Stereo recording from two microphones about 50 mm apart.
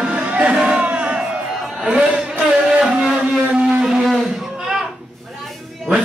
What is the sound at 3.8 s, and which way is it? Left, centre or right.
Livestock, centre.